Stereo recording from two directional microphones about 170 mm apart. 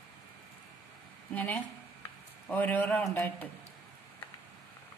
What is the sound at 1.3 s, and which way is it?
A woman's voice, 10° left (ahead or behind).